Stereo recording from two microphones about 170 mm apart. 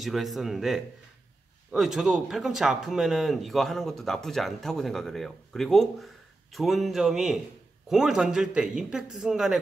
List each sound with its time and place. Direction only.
0.0 s speech: centre (ahead or behind)